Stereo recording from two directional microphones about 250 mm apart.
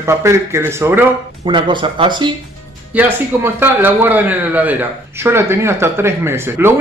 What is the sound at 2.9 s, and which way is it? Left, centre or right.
A man's voice, centre.